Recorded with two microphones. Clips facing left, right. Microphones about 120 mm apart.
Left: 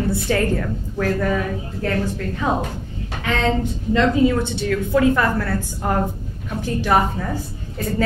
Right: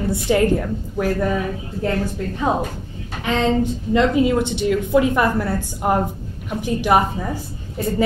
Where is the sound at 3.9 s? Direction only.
15° right (ahead or behind).